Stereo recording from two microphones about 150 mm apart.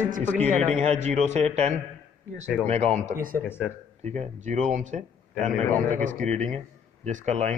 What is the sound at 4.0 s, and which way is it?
Speech, 50° right (ahead or behind).